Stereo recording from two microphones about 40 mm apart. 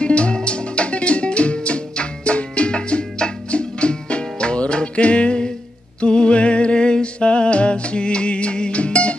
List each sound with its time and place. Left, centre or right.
0.0 s music: left